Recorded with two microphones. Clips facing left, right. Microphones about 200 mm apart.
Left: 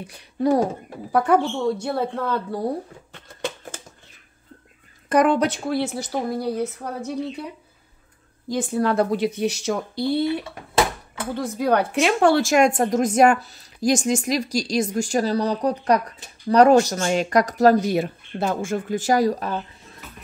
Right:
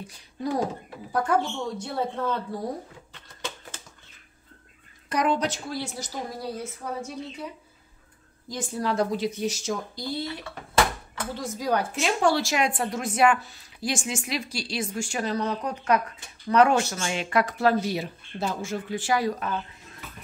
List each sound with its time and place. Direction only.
0.0 s a woman's voice: 65° left (ahead or behind)
5.1 s a woman's voice: 55° left (ahead or behind)
8.5 s a woman's voice: 60° left (ahead or behind)
11.3 s a woman's voice: 60° left (ahead or behind); by 19.6 s 35° left (ahead or behind)